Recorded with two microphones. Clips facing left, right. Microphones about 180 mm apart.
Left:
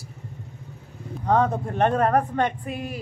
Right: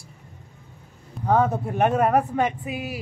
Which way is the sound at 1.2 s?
5° right (ahead or behind).